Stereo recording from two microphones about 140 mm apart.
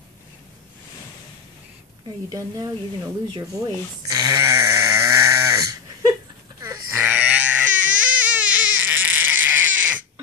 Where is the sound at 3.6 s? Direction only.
25° right (ahead or behind).